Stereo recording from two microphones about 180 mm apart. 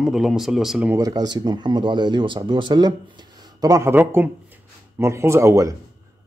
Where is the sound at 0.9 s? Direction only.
20° right (ahead or behind).